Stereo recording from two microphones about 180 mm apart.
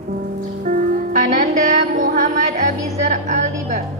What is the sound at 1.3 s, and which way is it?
Music, 45° right (ahead or behind).